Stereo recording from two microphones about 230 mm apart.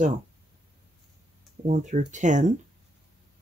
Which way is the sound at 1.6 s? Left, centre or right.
Right.